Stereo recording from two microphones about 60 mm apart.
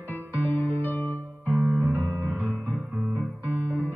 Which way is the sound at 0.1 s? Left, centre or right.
Left.